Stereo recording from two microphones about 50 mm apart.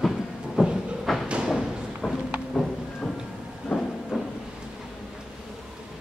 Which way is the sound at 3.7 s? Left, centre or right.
Centre.